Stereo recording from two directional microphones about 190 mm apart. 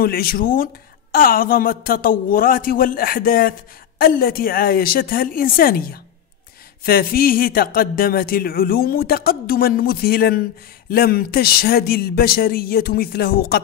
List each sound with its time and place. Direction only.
0.0 s speech: 50° left (ahead or behind)